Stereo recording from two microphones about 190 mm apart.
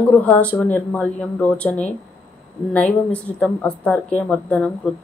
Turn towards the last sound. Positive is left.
turn(degrees=5)  # may be behind; listen again after turning